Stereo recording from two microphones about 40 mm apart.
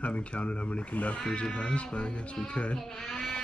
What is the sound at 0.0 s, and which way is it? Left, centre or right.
Speech, left.